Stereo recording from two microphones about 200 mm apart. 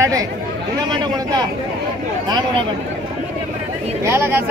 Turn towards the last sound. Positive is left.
turn(degrees=-10)  # may be behind; listen again after turning